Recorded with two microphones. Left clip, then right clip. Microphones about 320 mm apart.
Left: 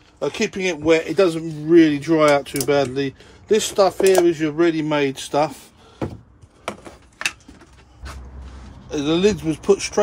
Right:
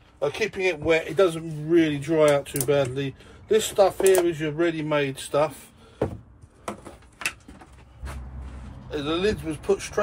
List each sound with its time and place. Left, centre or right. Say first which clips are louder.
0.2 s a man's voice: left 2 dB; left
8.9 s a man's voice: left 6 dB; left